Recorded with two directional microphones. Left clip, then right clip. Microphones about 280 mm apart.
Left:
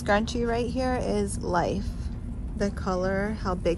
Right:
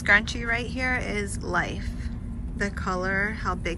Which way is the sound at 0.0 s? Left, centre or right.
Centre.